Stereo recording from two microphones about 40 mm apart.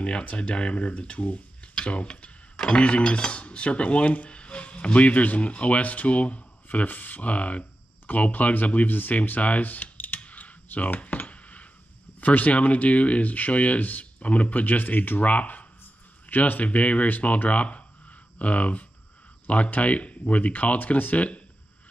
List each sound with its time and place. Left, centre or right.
0.4 s speech: left
2.5 s dishes: left
4.3 s speech: left
11.3 s a sound: left
12.2 s speech: left